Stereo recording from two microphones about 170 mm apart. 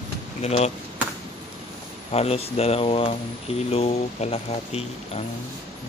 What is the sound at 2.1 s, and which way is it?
Speech, 35° left (ahead or behind).